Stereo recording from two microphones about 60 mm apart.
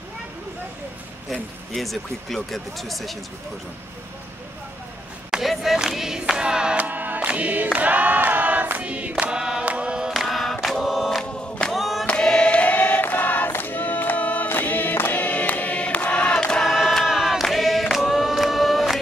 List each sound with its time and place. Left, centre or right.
1.7 s speech: centre
5.3 s choir: centre
6.8 s choir: right
9.3 s chant: centre
10.1 s choir: centre
12.1 s choir: centre
16.6 s choir: centre